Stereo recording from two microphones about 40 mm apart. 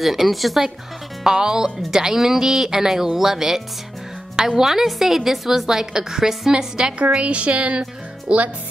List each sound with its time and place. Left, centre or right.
0.0 s speech: centre
1.2 s a woman's voice: centre
7.0 s speech: right